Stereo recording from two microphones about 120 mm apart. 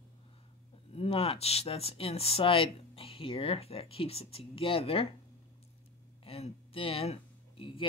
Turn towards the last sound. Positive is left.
turn(degrees=45)  # may be behind; listen again after turning